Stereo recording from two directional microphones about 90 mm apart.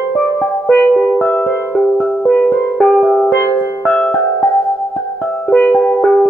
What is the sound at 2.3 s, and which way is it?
Music, 15° left (ahead or behind).